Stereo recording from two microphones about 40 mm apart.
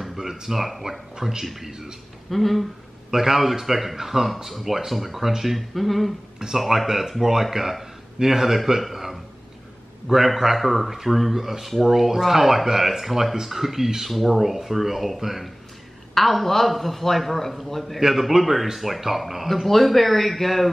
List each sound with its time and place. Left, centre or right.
0.2 s speech: centre
2.3 s speech: centre
3.1 s a man's voice: centre